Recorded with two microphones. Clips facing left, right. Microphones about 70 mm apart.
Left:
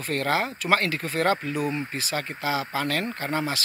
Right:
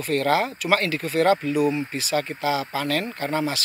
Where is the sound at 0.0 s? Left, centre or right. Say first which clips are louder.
Right 4 dB; left.